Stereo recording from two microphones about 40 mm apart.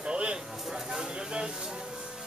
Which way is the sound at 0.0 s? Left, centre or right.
Right.